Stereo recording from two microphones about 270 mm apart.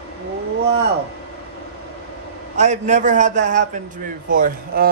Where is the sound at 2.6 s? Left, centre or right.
Right.